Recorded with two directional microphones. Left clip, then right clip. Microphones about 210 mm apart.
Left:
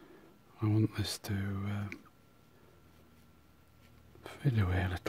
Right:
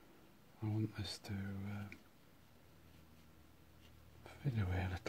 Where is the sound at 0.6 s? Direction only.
35° left (ahead or behind).